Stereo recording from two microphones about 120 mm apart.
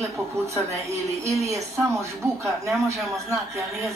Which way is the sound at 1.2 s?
25° right (ahead or behind).